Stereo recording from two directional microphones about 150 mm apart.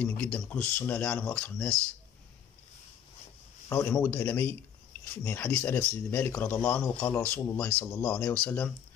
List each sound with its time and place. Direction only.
0.0 s speech: 10° left (ahead or behind)
3.6 s speech: 15° left (ahead or behind)